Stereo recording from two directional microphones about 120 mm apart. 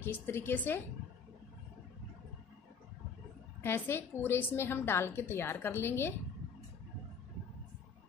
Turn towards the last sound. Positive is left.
turn(degrees=20)  # may be behind; listen again after turning